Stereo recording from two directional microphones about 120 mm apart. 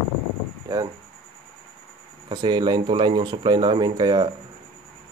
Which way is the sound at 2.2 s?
40° right (ahead or behind).